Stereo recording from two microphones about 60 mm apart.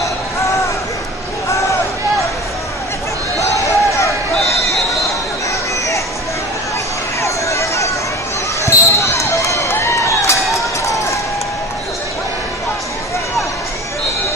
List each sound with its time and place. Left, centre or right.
3.3 s basketball bounce: left
7.2 s a sound: left
8.6 s basketball bounce: left
9.7 s run: left